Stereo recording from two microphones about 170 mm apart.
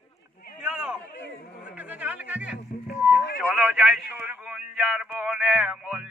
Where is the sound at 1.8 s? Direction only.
10° right (ahead or behind).